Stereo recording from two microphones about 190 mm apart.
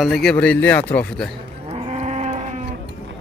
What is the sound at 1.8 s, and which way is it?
Livestock, 35° right (ahead or behind).